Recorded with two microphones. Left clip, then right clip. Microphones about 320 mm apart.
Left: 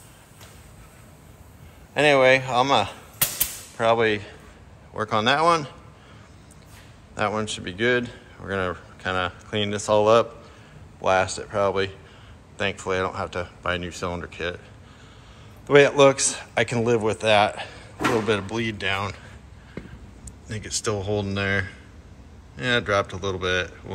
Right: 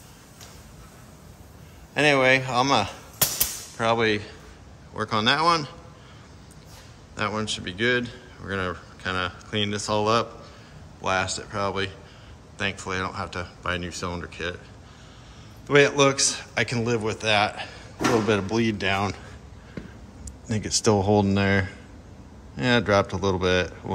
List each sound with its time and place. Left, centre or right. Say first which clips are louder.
2.0 s a man's voice: left 2 dB; centre
7.2 s a man's voice: left 2 dB; centre
15.6 s a man's voice: left 3 dB; centre
20.4 s speech: right 5 dB; right
23.0 s speech: right 3 dB; centre